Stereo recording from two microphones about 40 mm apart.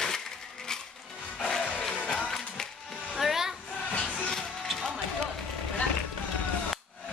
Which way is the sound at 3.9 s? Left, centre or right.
Left.